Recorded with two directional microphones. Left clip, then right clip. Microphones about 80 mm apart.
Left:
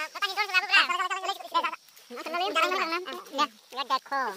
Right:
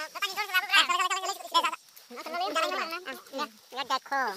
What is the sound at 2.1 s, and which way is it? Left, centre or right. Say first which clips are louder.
Goat: left 2 dB; left.